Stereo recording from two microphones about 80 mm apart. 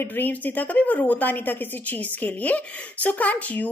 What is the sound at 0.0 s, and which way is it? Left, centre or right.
A woman's voice, left.